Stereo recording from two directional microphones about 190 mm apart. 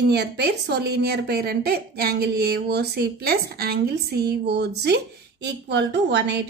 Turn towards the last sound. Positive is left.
turn(degrees=-65)  # may be behind; listen again after turning